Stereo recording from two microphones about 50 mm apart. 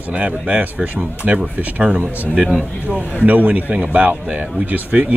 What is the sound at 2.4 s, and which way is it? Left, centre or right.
Speech, centre.